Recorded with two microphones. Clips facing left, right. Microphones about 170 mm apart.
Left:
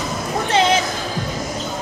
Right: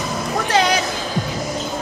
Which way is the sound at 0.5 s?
25° left (ahead or behind).